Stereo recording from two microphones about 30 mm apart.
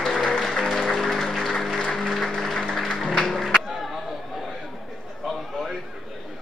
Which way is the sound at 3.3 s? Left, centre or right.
Centre.